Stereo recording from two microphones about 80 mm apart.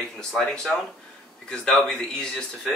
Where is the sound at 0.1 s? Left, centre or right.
Centre.